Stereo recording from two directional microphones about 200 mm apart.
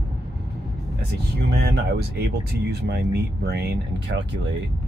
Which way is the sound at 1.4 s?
55° right (ahead or behind).